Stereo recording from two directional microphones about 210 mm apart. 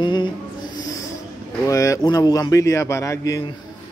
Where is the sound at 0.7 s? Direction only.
15° left (ahead or behind).